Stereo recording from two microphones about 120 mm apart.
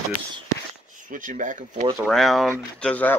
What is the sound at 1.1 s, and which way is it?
Speech, 90° right.